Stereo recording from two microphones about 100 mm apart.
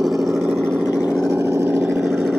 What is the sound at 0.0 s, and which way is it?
Vehicle, centre (ahead or behind).